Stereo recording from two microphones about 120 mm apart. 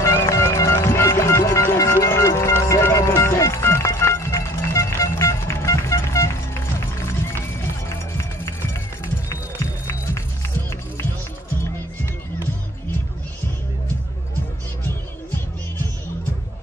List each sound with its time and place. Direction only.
0.0 s music: 25° left (ahead or behind)